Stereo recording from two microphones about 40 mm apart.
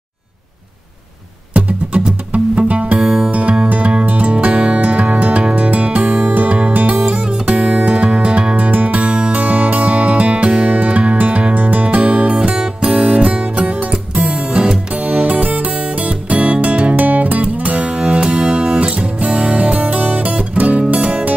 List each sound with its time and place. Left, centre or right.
1.5 s music: right
2.9 s music: right
3.3 s music: right
8.6 s music: right
9.0 s music: right
12.0 s music: right